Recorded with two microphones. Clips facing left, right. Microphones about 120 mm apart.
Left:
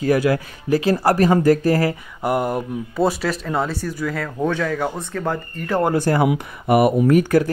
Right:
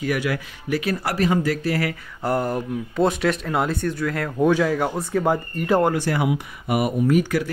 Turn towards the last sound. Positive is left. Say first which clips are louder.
# left 4 dB
turn(degrees=50)  # may be behind; listen again after turning